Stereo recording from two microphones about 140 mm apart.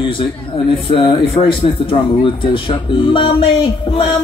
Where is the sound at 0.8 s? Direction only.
40° left (ahead or behind).